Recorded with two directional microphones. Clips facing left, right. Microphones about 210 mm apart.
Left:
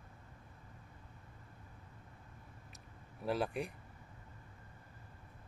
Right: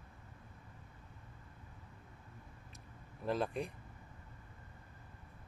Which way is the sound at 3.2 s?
10° left (ahead or behind).